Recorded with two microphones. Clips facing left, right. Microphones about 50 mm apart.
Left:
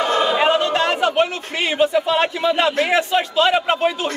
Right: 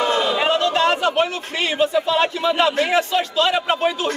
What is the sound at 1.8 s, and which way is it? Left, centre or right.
A man's voice, centre.